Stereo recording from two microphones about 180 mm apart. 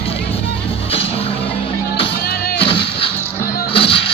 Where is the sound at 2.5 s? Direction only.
30° left (ahead or behind).